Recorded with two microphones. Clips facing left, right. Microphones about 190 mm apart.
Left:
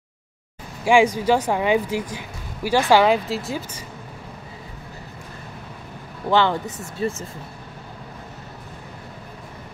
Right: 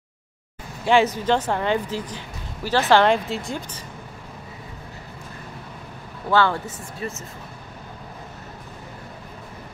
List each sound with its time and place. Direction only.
0.8 s speech: 10° left (ahead or behind)
6.3 s speech: 20° left (ahead or behind)
6.6 s speech: 30° left (ahead or behind)